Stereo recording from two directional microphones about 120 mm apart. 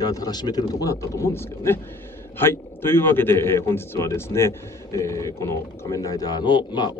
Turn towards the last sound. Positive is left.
turn(degrees=40)  # may be behind; listen again after turning